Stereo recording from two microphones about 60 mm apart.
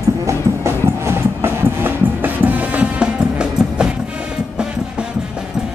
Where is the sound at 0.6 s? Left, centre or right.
Right.